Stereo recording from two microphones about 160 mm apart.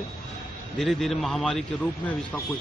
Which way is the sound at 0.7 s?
Centre (ahead or behind).